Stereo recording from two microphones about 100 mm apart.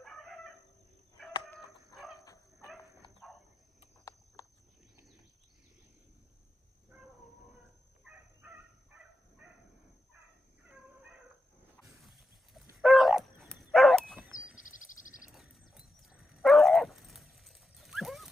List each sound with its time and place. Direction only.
0.0 s chicken: 5° left (ahead or behind)
2.2 s dog: 35° left (ahead or behind)
3.2 s a sound: 5° right (ahead or behind)
8.0 s fowl: 15° right (ahead or behind)
10.7 s cat: 15° right (ahead or behind)
11.8 s dog: centre (ahead or behind)
14.3 s bird: 5° right (ahead or behind)
15.7 s dog: 5° right (ahead or behind)